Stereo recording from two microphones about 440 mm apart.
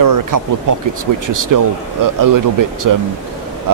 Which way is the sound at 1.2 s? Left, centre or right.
Right.